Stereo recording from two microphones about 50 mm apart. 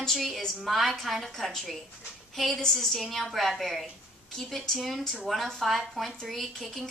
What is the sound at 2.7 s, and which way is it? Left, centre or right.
A woman's voice, centre.